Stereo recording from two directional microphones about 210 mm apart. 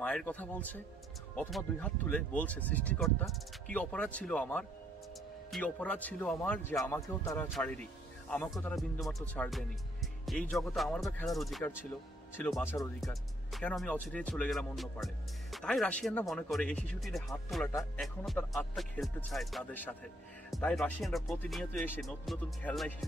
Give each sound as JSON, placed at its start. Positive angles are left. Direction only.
{"t": 0.0, "sound": "speech", "side_deg": 5}
{"t": 17.6, "sound": "speech", "side_deg": 10}
{"t": 18.0, "sound": "speech", "side_deg": 0}